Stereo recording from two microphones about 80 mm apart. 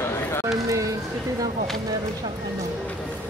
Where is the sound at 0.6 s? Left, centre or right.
Right.